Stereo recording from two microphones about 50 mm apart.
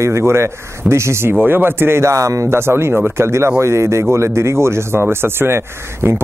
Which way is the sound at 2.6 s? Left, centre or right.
Right.